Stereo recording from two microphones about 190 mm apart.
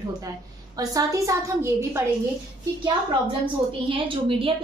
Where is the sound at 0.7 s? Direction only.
20° right (ahead or behind).